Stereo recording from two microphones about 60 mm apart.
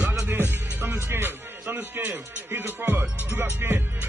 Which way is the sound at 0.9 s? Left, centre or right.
Right.